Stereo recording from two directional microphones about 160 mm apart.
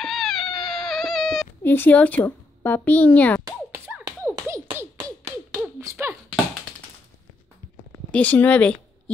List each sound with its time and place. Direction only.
0.0 s cat: centre (ahead or behind)
1.6 s a child's voice: 10° left (ahead or behind)
3.4 s music: 15° right (ahead or behind)
4.8 s a sound: 15° right (ahead or behind)
8.1 s speech: 10° left (ahead or behind)